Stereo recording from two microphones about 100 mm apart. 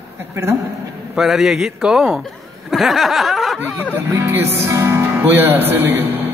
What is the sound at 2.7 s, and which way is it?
Snicker, centre (ahead or behind).